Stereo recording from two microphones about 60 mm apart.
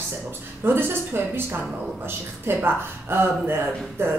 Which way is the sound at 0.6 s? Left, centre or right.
Right.